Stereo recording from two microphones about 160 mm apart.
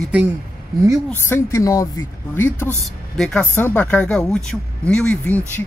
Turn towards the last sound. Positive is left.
turn(degrees=10)  # may be behind; listen again after turning